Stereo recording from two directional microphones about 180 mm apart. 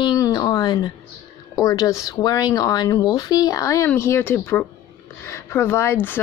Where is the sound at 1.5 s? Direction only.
20° left (ahead or behind).